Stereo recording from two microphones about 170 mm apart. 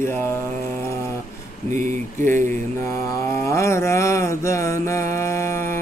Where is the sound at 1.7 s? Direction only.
45° right (ahead or behind).